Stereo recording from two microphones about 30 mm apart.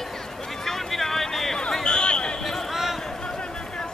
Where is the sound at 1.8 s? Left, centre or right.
Left.